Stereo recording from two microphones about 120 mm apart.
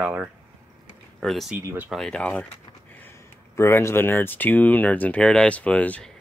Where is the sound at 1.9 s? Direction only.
5° left (ahead or behind).